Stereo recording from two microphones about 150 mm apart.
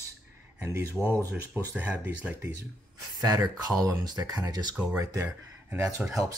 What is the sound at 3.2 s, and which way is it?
Speech, 25° right (ahead or behind).